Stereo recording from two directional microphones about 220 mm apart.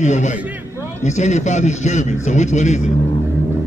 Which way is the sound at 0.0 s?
35° left (ahead or behind).